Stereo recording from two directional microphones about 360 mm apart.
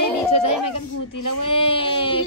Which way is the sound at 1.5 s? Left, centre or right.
Centre.